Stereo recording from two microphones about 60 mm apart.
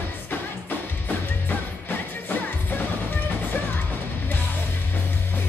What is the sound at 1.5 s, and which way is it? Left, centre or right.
Music, left.